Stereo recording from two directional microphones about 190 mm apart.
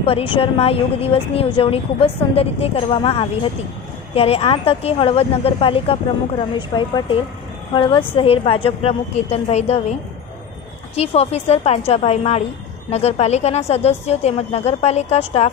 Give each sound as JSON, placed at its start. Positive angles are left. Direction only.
{"t": 0.0, "sound": "a woman's voice", "side_deg": 30}
{"t": 11.0, "sound": "a woman's voice", "side_deg": 35}